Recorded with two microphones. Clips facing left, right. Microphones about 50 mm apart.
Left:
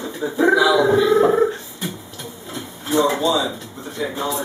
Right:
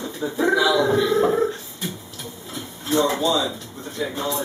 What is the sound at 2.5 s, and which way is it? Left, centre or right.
Drawer open or close, centre.